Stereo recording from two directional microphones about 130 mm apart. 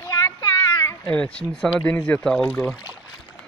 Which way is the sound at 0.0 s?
25° left (ahead or behind).